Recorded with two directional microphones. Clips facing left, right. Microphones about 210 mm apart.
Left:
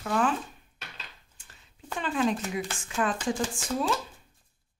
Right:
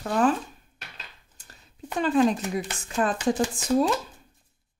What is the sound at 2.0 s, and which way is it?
Speech, 40° right (ahead or behind).